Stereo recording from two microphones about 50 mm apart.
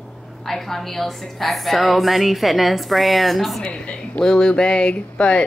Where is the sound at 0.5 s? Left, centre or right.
Centre.